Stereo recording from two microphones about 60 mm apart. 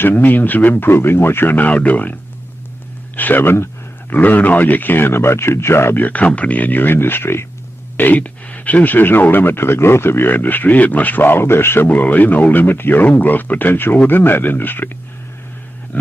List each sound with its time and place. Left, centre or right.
0.0 s speech: left
1.7 s speech: left
3.2 s speech: left
4.1 s speech: left
5.9 s speech: left
8.0 s speech: left
11.9 s speech: left